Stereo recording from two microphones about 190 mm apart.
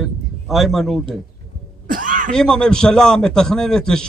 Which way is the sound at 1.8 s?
45° right (ahead or behind).